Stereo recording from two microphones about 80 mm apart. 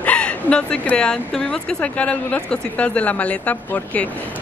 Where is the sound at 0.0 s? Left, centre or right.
Centre.